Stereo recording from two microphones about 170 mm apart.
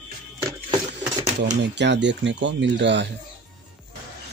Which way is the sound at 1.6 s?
90° right.